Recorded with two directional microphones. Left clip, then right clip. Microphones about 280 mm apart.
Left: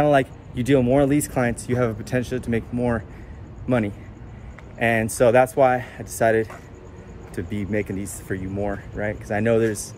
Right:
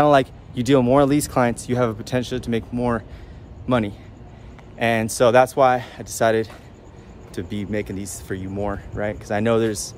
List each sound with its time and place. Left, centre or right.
0.0 s a man's voice: centre